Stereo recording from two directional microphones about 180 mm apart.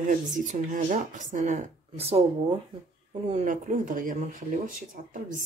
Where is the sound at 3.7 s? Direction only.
50° right (ahead or behind).